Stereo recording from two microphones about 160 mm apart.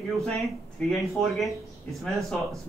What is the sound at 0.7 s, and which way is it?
Speech, centre (ahead or behind).